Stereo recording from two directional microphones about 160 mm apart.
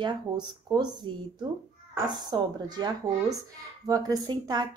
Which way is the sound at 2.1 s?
25° right (ahead or behind).